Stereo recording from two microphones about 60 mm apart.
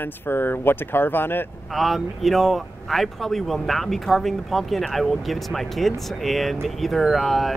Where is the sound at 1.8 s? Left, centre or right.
Centre.